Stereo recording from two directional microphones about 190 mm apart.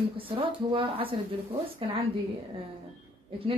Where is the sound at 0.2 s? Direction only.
30° right (ahead or behind).